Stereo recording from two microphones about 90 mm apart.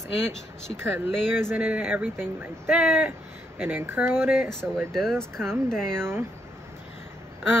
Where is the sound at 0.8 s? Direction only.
25° right (ahead or behind).